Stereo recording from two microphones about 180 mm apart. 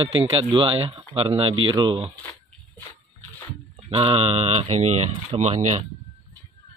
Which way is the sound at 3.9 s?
30° right (ahead or behind).